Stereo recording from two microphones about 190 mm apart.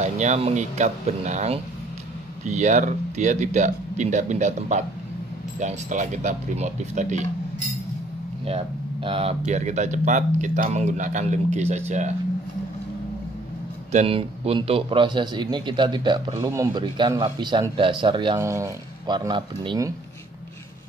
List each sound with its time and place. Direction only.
0.0 s speech: 35° right (ahead or behind)
8.5 s speech: 30° right (ahead or behind)
13.9 s a man's voice: 30° right (ahead or behind)